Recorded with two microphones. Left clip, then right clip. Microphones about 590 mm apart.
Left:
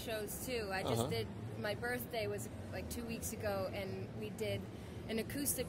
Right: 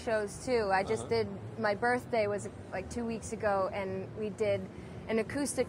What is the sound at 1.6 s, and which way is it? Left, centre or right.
A woman's voice, right.